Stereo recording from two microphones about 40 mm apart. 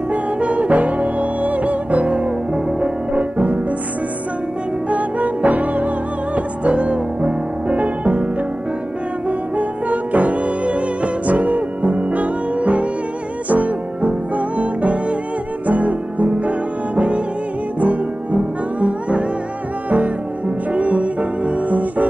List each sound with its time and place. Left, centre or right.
0.1 s music: right
4.8 s music: right
9.6 s music: right
20.7 s music: right